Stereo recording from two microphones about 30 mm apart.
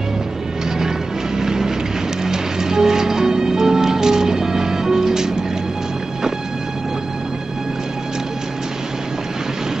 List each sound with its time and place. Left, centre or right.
0.7 s music: centre